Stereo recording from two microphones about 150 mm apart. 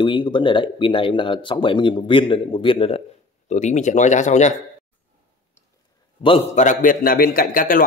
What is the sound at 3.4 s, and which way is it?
Speech, 50° left (ahead or behind).